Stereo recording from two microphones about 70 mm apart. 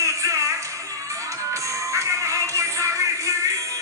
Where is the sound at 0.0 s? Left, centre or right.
Right.